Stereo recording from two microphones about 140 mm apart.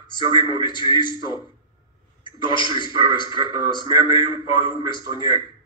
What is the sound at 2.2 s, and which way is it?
Speech, 35° left (ahead or behind).